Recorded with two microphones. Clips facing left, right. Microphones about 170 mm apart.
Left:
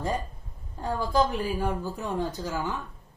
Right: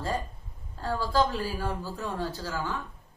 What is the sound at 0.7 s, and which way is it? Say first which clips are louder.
A woman's voice: left 1 dB; 20° left (ahead or behind).